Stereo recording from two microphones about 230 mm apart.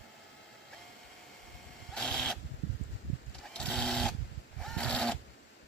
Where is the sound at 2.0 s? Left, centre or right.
Centre.